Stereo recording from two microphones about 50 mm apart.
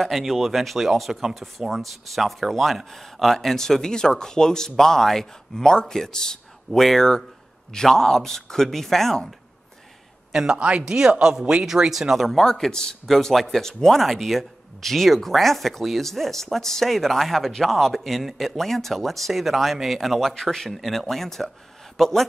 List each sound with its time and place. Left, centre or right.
0.0 s speech: centre
10.3 s speech: centre
12.3 s speech: centre